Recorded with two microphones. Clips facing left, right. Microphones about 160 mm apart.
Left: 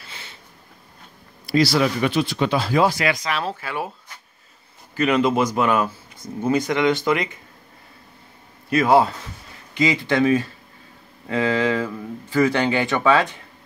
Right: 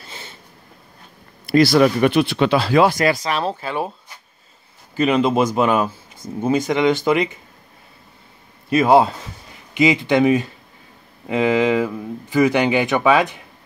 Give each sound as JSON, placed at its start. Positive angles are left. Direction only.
{"t": 1.4, "sound": "speech", "side_deg": -55}
{"t": 2.9, "sound": "speech", "side_deg": -40}
{"t": 4.9, "sound": "speech", "side_deg": -20}
{"t": 8.6, "sound": "speech", "side_deg": -20}